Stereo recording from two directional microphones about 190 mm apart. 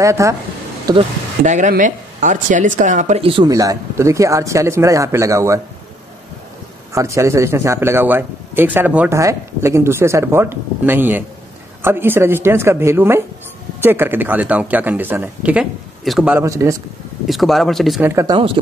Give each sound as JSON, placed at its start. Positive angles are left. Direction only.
{"t": 0.0, "sound": "a man's voice", "side_deg": -15}
{"t": 1.4, "sound": "speech", "side_deg": -40}
{"t": 6.9, "sound": "a man's voice", "side_deg": -15}
{"t": 16.3, "sound": "a man's voice", "side_deg": -15}
{"t": 17.3, "sound": "speech", "side_deg": 0}
{"t": 18.0, "sound": "speech", "side_deg": -15}